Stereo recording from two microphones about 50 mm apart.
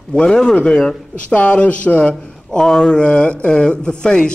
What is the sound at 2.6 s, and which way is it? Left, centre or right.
A man's voice, centre.